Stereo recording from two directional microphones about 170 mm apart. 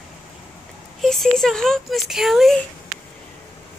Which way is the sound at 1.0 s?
Centre (ahead or behind).